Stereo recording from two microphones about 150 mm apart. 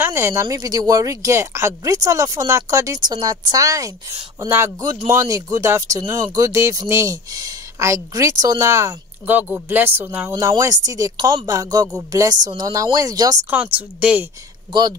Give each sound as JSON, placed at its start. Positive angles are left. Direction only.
{"t": 0.0, "sound": "speech", "side_deg": -15}
{"t": 13.5, "sound": "speech", "side_deg": -10}
{"t": 14.7, "sound": "speech", "side_deg": -25}